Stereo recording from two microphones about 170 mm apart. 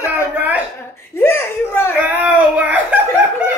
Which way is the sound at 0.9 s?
15° left (ahead or behind).